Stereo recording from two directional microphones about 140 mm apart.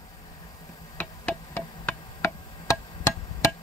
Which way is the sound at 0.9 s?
15° left (ahead or behind).